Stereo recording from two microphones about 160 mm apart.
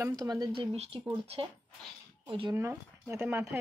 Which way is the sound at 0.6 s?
40° right (ahead or behind).